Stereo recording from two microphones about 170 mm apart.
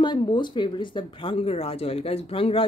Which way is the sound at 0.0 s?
25° left (ahead or behind).